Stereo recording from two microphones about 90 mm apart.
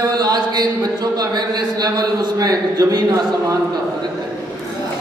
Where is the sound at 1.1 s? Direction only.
50° right (ahead or behind).